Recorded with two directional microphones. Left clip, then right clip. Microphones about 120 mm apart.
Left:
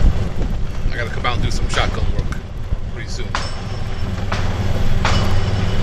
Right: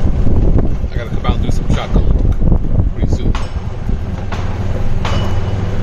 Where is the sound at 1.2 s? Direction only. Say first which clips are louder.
Right 2 dB; 20° right (ahead or behind).